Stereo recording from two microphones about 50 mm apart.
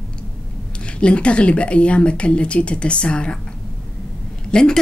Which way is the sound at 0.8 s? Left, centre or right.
Left.